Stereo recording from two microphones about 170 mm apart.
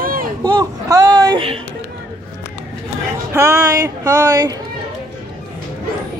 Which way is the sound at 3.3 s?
15° right (ahead or behind).